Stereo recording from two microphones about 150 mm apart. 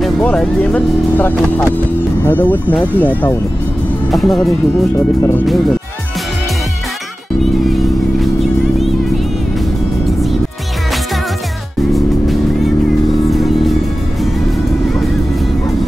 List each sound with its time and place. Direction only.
0.0 s speech: 5° left (ahead or behind)
4.1 s speech: centre (ahead or behind)
4.9 s speech: 20° left (ahead or behind)
7.6 s music: centre (ahead or behind)
13.3 s music: centre (ahead or behind)